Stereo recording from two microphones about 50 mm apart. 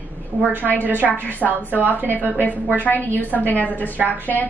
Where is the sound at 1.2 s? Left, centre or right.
Left.